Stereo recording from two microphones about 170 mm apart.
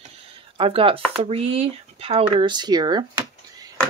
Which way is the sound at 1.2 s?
35° right (ahead or behind).